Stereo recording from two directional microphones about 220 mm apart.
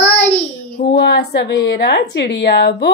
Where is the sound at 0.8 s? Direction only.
50° left (ahead or behind).